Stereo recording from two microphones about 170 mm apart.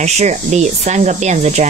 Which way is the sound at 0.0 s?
45° right (ahead or behind).